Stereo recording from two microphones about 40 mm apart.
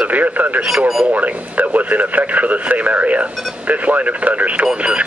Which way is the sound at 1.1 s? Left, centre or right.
Right.